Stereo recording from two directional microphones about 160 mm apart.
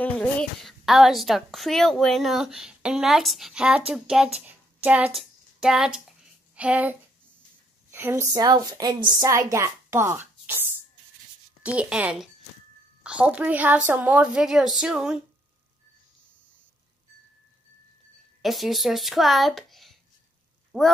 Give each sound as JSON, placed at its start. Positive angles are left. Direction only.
{"t": 0.0, "sound": "a woman's voice", "side_deg": 5}
{"t": 18.4, "sound": "a child's voice", "side_deg": 0}